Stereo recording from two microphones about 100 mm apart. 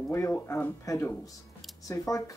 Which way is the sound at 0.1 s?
25° left (ahead or behind).